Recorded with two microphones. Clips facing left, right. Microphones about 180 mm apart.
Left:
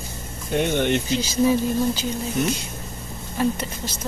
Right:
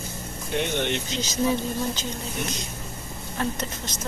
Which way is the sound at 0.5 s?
50° left (ahead or behind).